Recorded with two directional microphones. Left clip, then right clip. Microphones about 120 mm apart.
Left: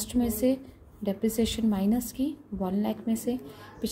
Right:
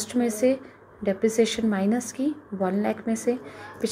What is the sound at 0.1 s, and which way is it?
A woman's voice, 15° left (ahead or behind).